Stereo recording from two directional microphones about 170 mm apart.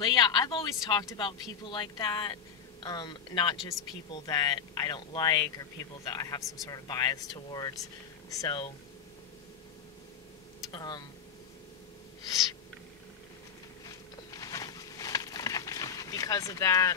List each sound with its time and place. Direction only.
0.0 s speech: 25° left (ahead or behind)
10.7 s speech: 25° left (ahead or behind)
13.8 s a sound: 20° left (ahead or behind)